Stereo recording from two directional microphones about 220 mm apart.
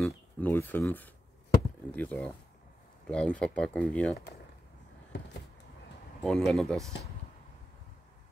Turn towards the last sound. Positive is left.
turn(degrees=0)  # may be behind; listen again after turning